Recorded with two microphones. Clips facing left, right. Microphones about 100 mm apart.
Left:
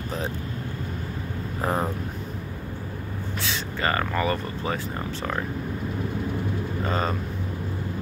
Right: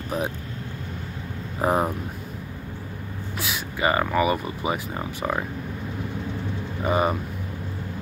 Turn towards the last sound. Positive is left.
turn(degrees=-15)  # may be behind; listen again after turning